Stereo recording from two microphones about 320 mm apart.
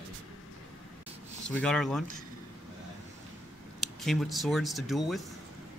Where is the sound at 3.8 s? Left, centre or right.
Centre.